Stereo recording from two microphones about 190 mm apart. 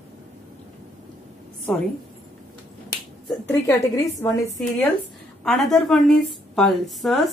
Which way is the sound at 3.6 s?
15° left (ahead or behind).